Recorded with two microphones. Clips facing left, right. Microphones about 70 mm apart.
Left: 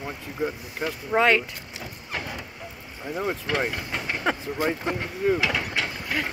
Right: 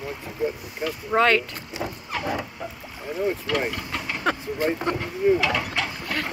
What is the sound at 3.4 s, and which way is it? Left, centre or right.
Speech, centre.